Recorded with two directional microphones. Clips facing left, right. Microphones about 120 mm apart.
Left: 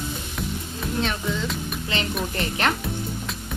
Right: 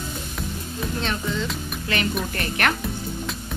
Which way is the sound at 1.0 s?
Centre (ahead or behind).